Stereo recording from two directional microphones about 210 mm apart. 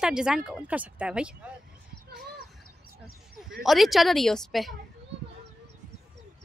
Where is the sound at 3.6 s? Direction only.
Centre (ahead or behind).